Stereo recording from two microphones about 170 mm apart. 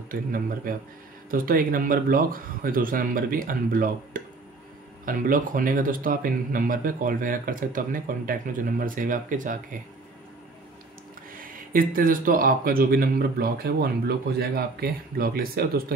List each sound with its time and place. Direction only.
0.1 s a man's voice: 55° right (ahead or behind)
11.5 s a man's voice: 55° right (ahead or behind)